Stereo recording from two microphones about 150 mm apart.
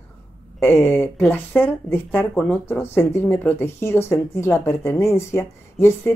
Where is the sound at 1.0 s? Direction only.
10° left (ahead or behind).